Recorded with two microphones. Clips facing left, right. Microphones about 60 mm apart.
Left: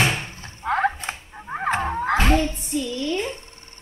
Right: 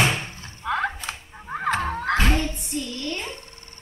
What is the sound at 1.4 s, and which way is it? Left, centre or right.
Music, centre.